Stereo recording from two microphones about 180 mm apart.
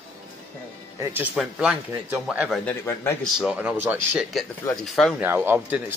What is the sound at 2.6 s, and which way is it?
Speech, 15° left (ahead or behind).